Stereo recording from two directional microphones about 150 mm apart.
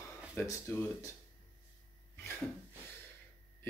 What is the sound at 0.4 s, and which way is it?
Speech, 20° left (ahead or behind).